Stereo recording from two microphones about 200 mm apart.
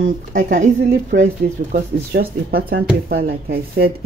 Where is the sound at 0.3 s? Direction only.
40° right (ahead or behind).